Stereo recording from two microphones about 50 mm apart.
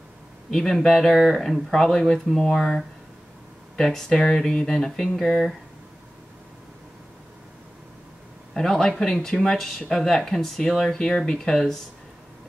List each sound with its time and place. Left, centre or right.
0.5 s speech: centre
8.5 s speech: centre